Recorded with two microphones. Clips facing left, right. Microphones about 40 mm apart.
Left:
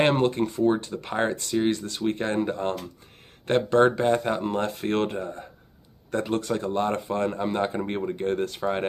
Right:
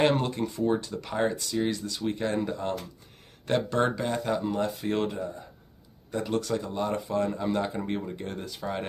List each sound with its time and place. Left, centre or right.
0.0 s speech: left
6.6 s speech: left